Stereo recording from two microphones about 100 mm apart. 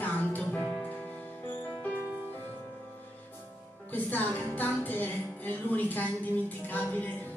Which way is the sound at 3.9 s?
20° left (ahead or behind).